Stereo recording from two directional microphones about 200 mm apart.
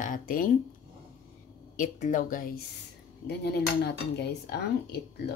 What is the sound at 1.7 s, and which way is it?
Speech, 40° left (ahead or behind).